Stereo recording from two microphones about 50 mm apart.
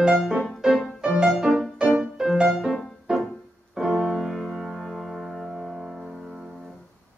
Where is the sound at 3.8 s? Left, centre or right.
Centre.